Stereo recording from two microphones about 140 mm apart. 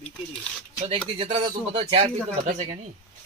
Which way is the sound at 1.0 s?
45° right (ahead or behind).